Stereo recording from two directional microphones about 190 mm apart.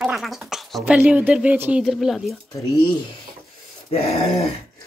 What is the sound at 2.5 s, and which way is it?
Speech, 20° left (ahead or behind).